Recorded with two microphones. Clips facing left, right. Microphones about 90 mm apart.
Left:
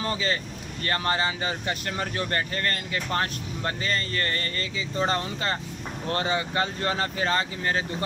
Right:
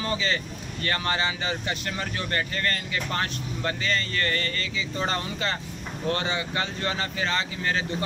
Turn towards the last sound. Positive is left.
turn(degrees=40)  # may be behind; listen again after turning